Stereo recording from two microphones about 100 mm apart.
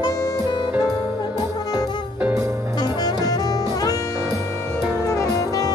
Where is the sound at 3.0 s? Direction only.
40° left (ahead or behind).